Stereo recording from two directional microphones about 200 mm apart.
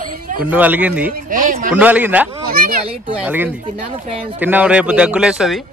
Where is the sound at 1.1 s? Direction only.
45° right (ahead or behind).